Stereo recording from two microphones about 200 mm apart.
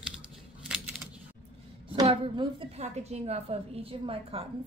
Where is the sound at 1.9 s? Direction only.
25° right (ahead or behind).